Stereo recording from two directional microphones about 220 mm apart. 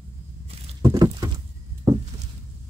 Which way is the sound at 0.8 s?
15° right (ahead or behind).